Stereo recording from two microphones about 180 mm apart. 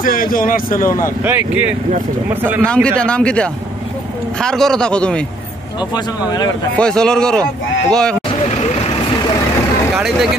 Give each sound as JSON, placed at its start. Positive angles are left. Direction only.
{"t": 0.0, "sound": "a man's voice", "side_deg": 50}
{"t": 1.2, "sound": "speech", "side_deg": -10}
{"t": 2.6, "sound": "speech", "side_deg": 5}
{"t": 5.9, "sound": "speech", "side_deg": 20}
{"t": 6.8, "sound": "speech", "side_deg": 5}